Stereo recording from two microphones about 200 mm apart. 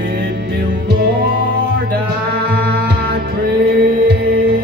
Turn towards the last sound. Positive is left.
turn(degrees=-55)  # may be behind; listen again after turning